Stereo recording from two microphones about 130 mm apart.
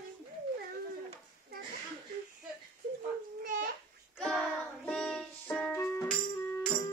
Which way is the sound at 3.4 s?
90° right.